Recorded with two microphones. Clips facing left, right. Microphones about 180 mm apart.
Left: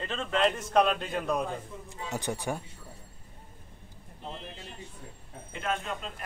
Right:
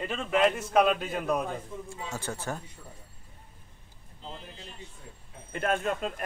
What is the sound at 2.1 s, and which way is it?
Speech, 15° left (ahead or behind).